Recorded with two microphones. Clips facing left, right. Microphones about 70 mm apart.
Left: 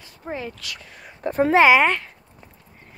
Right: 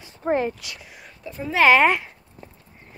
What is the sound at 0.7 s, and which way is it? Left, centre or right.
Speech, centre.